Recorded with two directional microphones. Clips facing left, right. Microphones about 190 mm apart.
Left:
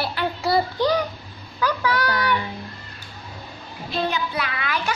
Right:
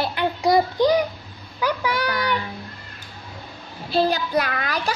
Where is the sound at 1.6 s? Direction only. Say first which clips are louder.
Even; 10° right (ahead or behind).